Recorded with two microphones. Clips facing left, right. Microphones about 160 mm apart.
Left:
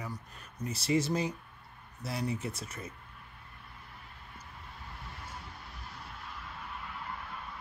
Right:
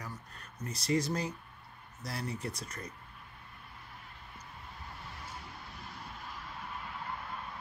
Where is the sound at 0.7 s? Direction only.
25° left (ahead or behind).